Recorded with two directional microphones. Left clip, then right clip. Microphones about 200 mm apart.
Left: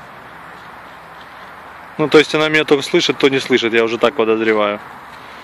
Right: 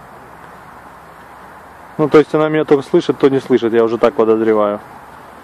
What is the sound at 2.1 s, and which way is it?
Speech, 5° right (ahead or behind).